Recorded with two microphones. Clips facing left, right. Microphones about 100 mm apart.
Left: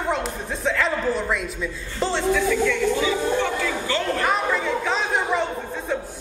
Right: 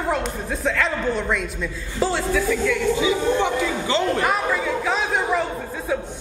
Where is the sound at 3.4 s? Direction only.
20° right (ahead or behind).